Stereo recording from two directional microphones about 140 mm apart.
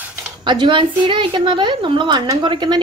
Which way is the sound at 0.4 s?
35° right (ahead or behind).